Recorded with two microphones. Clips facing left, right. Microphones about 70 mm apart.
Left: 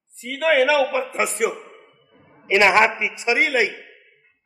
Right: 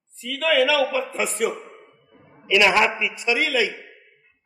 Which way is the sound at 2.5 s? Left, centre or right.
Left.